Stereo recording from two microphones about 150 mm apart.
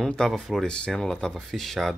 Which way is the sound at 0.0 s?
5° left (ahead or behind).